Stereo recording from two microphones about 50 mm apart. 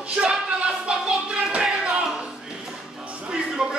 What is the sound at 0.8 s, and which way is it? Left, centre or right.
Music, centre.